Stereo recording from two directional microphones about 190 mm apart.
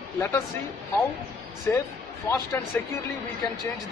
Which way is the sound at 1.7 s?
15° left (ahead or behind).